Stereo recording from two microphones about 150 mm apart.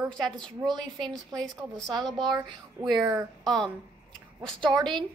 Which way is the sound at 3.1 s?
5° left (ahead or behind).